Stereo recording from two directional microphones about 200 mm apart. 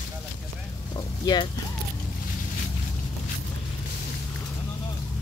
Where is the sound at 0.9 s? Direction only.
20° left (ahead or behind).